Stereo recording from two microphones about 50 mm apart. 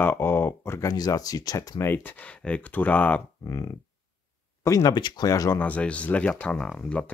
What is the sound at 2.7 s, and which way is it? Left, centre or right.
Speech, left.